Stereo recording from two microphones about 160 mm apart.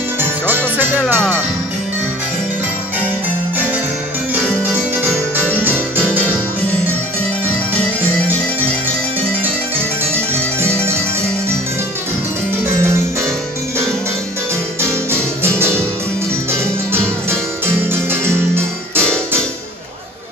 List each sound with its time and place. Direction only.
0.2 s music: 10° right (ahead or behind)
1.0 s music: 5° left (ahead or behind)
5.6 s music: 10° right (ahead or behind)
10.6 s music: 15° right (ahead or behind)
12.6 s music: 15° right (ahead or behind)
14.8 s music: 15° right (ahead or behind)
18.3 s music: 15° right (ahead or behind)